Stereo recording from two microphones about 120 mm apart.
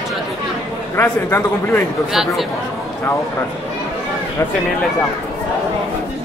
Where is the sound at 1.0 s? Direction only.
20° left (ahead or behind).